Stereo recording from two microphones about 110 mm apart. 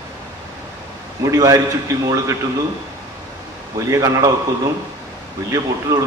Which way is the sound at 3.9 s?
30° right (ahead or behind).